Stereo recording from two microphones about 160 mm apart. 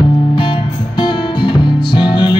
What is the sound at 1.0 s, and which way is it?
Music, 30° left (ahead or behind).